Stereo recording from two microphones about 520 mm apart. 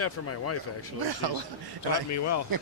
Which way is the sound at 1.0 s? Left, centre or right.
Right.